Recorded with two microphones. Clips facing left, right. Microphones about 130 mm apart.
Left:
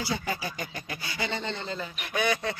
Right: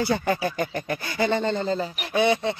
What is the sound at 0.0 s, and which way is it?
Speech, 55° right (ahead or behind).